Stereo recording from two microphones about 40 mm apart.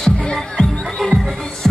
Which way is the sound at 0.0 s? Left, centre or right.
Centre.